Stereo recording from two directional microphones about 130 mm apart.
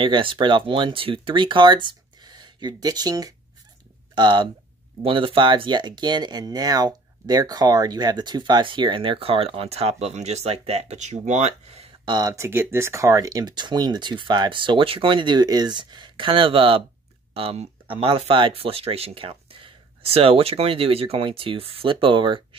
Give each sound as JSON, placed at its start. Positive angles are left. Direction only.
{"t": 0.0, "sound": "speech", "side_deg": -40}
{"t": 12.0, "sound": "speech", "side_deg": -30}